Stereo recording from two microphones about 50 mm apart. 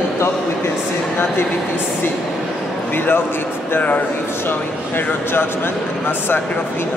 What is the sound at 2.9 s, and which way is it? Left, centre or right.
Speech, left.